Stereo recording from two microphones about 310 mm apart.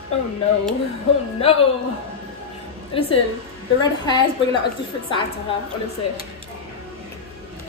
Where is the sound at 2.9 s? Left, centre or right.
Centre.